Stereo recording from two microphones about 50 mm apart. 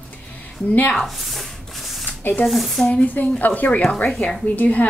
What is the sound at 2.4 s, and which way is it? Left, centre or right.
Speech, centre.